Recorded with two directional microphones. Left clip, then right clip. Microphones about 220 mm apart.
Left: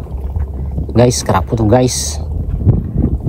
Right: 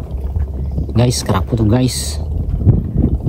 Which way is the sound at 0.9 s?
Centre (ahead or behind).